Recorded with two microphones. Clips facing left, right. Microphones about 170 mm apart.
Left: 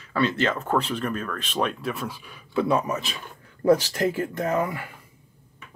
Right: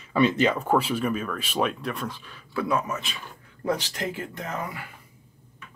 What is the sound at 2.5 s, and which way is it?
Speech, 25° left (ahead or behind).